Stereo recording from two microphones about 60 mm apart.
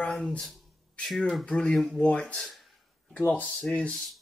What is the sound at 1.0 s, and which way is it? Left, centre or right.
Speech, centre.